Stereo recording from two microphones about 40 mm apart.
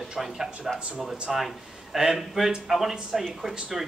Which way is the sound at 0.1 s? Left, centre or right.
Centre.